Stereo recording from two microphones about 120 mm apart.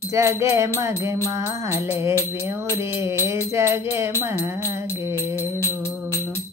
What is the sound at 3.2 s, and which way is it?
Music, 20° right (ahead or behind).